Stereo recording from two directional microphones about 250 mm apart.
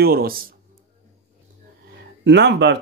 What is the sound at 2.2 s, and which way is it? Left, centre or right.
Speech, right.